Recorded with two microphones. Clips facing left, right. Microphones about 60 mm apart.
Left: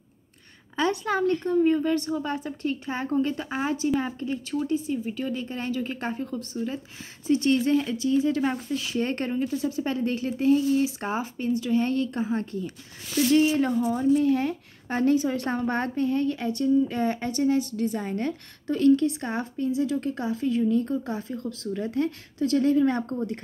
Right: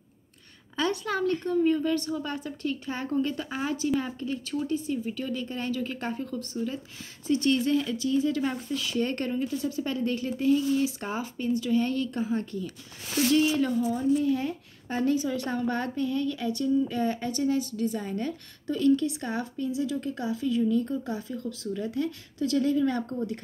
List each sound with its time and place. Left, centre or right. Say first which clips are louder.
0.7 s a woman's voice: left 3 dB; left
13.9 s a woman's voice: left 5 dB; left
19.2 s a woman's voice: left 3 dB; left